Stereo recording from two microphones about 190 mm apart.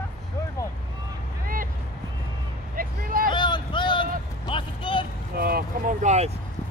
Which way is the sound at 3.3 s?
25° left (ahead or behind).